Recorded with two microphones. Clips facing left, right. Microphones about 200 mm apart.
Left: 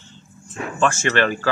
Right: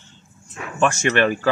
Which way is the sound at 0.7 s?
15° right (ahead or behind).